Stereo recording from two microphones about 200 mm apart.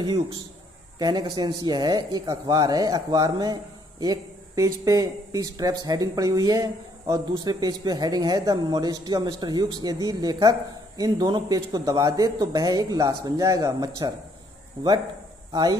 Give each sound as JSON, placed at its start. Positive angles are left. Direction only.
{"t": 0.9, "sound": "speech", "side_deg": -20}